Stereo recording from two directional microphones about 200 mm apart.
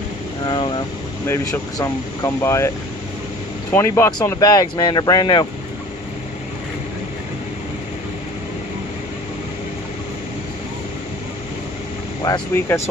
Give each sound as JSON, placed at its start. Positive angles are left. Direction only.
{"t": 0.5, "sound": "vehicle", "side_deg": 25}
{"t": 1.2, "sound": "speech", "side_deg": 15}
{"t": 3.7, "sound": "speech", "side_deg": 15}
{"t": 12.2, "sound": "speech", "side_deg": 15}